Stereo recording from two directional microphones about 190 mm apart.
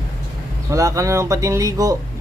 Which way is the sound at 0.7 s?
15° right (ahead or behind).